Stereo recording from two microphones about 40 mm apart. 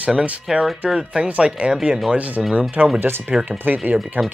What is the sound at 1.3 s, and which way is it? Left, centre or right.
Speech, right.